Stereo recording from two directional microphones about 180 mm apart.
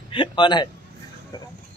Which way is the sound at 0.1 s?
25° left (ahead or behind).